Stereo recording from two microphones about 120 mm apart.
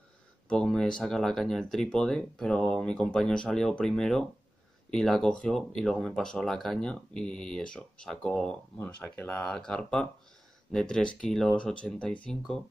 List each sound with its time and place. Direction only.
0.5 s speech: 5° left (ahead or behind)
9.4 s speech: 5° left (ahead or behind)